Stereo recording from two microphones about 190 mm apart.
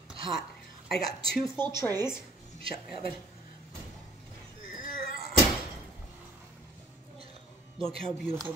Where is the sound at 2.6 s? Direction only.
30° right (ahead or behind).